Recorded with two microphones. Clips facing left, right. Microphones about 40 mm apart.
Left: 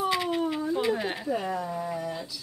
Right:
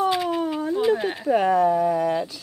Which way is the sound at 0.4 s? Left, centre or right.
Right.